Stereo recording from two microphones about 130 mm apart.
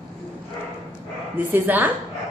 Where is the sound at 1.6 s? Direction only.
15° right (ahead or behind).